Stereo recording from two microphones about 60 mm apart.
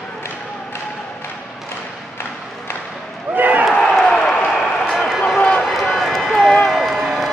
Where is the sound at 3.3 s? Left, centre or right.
Right.